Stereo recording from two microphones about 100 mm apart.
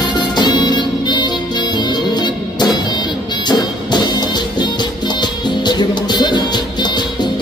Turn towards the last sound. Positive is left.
turn(degrees=45)  # may be behind; listen again after turning